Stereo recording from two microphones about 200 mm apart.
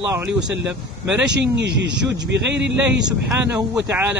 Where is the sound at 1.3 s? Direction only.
60° right (ahead or behind).